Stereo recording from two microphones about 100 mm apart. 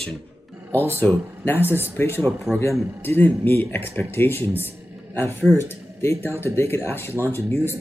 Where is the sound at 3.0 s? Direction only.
20° left (ahead or behind).